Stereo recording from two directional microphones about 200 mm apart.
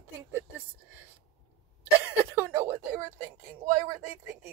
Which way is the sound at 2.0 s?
15° right (ahead or behind).